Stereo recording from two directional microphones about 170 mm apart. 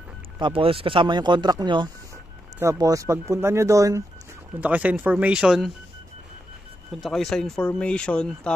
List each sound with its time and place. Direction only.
0.4 s speech: 30° right (ahead or behind); by 5.7 s 5° right (ahead or behind)
7.0 s speech: centre (ahead or behind)